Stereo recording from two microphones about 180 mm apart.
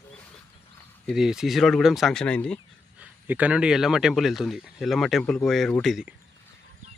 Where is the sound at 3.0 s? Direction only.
10° right (ahead or behind).